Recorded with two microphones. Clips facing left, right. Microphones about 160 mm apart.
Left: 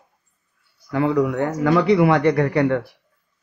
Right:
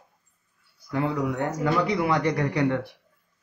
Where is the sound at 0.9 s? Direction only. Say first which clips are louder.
Left 7 dB; 85° left; by 2.8 s 60° left (ahead or behind).